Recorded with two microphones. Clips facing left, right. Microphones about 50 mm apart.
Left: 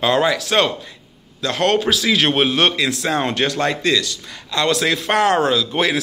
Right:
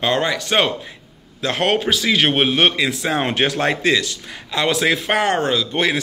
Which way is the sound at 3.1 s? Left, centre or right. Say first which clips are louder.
Right 1 dB; right.